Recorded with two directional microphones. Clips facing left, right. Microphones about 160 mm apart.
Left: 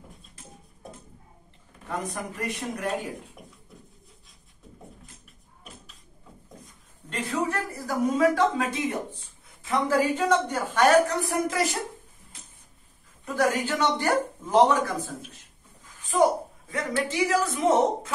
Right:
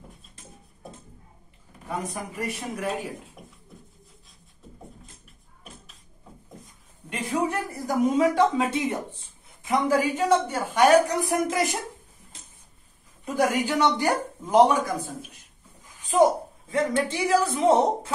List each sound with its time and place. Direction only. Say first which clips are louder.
1.9 s a man's voice: even; 10° right (ahead or behind)
7.1 s a man's voice: right 2 dB; 15° right (ahead or behind)
13.2 s a sound: right 1 dB; 15° right (ahead or behind)
16.7 s a man's voice: right 3 dB; 30° right (ahead or behind)